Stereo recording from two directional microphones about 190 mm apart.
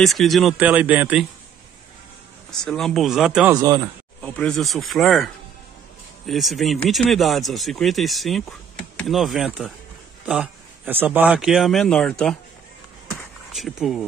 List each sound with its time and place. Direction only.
0.0 s speech: centre (ahead or behind)
2.6 s speech: centre (ahead or behind)
3.5 s speech: 20° right (ahead or behind)
4.2 s speech: 5° left (ahead or behind)
6.2 s speech: centre (ahead or behind)
13.1 s a sound: centre (ahead or behind)